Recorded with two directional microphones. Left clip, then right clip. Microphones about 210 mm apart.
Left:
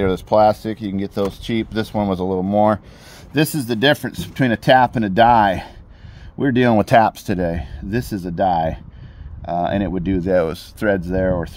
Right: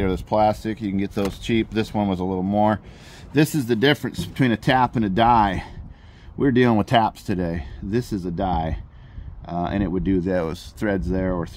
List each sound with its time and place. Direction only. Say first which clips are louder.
0.0 s speech: left 5 dB; 35° left (ahead or behind)
3.3 s speech: left 1 dB; 15° left (ahead or behind)